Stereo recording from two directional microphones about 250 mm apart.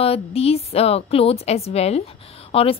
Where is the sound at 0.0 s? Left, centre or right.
Left.